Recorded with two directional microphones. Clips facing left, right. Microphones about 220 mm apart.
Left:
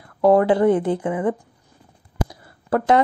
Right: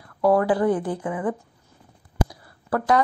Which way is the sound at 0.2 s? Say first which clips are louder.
Left 4 dB; 25° left (ahead or behind).